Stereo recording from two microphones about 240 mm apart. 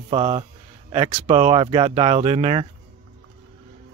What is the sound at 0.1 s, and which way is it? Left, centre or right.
Speech, right.